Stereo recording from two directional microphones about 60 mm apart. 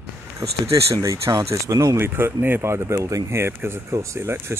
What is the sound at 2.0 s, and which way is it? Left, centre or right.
Speech, right.